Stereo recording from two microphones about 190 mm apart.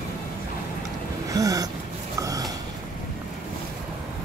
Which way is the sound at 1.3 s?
20° right (ahead or behind).